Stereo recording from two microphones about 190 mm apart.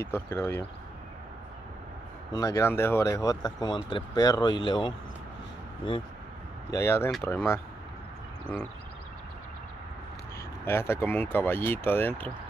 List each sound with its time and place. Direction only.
0.0 s speech: 10° left (ahead or behind)
2.3 s speech: 15° left (ahead or behind)
6.7 s speech: 15° left (ahead or behind)
10.6 s speech: 10° left (ahead or behind)